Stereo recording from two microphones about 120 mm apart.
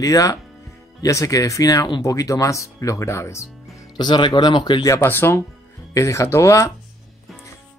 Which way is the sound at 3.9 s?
40° left (ahead or behind).